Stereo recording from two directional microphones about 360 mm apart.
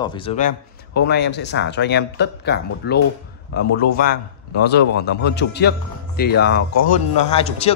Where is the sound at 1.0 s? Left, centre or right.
Left.